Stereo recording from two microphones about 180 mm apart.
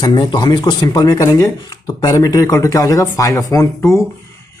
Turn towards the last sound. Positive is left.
turn(degrees=15)  # may be behind; listen again after turning